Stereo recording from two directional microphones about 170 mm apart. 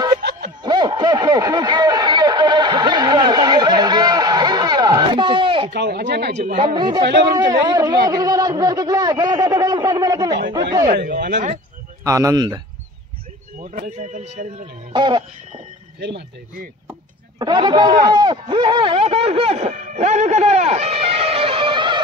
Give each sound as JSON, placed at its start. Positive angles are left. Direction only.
{"t": 0.2, "sound": "music", "side_deg": -75}
{"t": 0.7, "sound": "a sound", "side_deg": -25}
{"t": 5.7, "sound": "a sound", "side_deg": -75}
{"t": 6.6, "sound": "a man's voice", "side_deg": -25}
{"t": 11.1, "sound": "speech", "side_deg": -75}
{"t": 12.0, "sound": "a man's voice", "side_deg": -20}
{"t": 13.6, "sound": "speech", "side_deg": -50}
{"t": 14.9, "sound": "a man's voice", "side_deg": -25}
{"t": 17.4, "sound": "a man's voice", "side_deg": -25}